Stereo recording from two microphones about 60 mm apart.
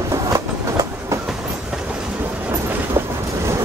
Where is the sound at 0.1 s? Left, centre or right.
Right.